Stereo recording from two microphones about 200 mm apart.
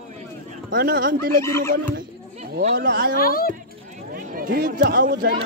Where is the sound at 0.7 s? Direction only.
45° right (ahead or behind).